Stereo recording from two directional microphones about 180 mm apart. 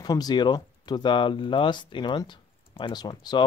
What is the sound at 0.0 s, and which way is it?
Speech, 20° left (ahead or behind).